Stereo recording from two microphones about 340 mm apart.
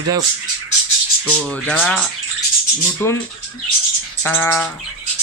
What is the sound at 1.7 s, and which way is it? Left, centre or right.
Speech, centre.